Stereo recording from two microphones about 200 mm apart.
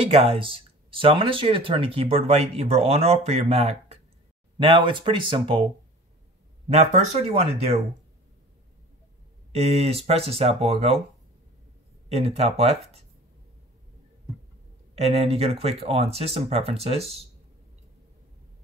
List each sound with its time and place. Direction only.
0.0 s speech: 30° right (ahead or behind)
6.7 s speech: 35° right (ahead or behind)
9.5 s speech: 30° right (ahead or behind)
12.1 s speech: 30° right (ahead or behind)
15.0 s speech: 30° right (ahead or behind)